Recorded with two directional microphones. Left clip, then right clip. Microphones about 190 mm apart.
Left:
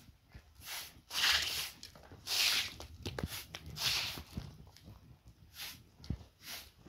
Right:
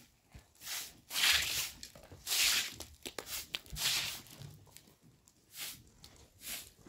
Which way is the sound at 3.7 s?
10° right (ahead or behind).